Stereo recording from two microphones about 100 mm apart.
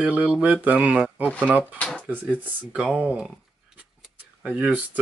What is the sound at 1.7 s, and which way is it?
Speech, 15° left (ahead or behind).